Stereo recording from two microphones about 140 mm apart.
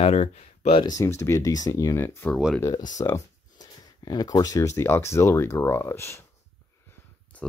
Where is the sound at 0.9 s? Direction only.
20° left (ahead or behind).